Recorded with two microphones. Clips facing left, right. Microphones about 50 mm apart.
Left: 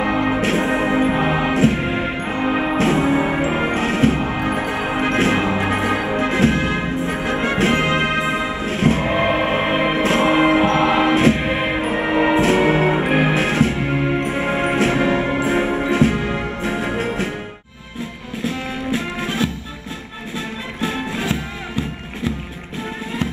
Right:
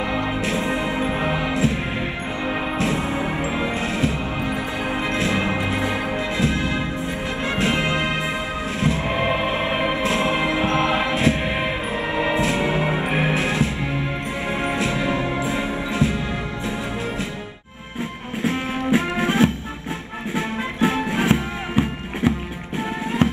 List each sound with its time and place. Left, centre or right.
0.0 s music: left
18.4 s music: right